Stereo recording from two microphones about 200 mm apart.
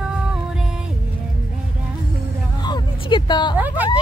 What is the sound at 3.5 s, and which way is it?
Speech, 10° right (ahead or behind).